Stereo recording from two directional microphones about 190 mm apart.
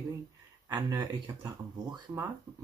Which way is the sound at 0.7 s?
20° right (ahead or behind).